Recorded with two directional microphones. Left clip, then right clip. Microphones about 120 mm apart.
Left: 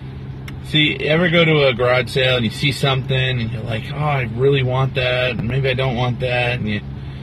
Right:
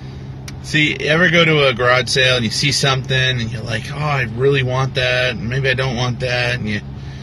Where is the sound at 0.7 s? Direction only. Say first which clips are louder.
Right 2 dB; 25° left (ahead or behind).